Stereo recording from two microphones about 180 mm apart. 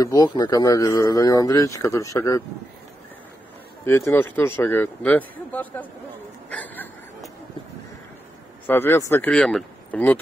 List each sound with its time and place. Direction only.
0.0 s speech: 20° left (ahead or behind)
3.8 s speech: 15° left (ahead or behind)
6.5 s chuckle: 10° left (ahead or behind)
8.6 s speech: 10° left (ahead or behind)